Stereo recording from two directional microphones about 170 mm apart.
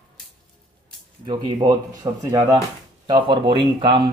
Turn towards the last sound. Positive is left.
turn(degrees=-25)  # may be behind; listen again after turning